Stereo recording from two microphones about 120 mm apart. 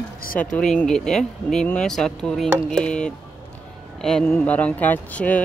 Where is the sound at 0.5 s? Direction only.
5° left (ahead or behind).